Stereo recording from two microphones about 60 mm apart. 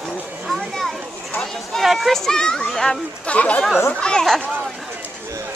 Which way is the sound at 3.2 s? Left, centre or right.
Left.